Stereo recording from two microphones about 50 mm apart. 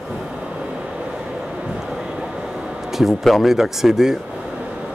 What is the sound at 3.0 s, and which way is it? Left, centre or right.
Speech, centre.